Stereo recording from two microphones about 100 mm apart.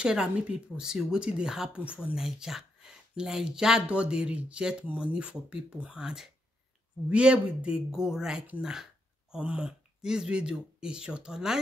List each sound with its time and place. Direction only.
0.0 s speech: 10° right (ahead or behind)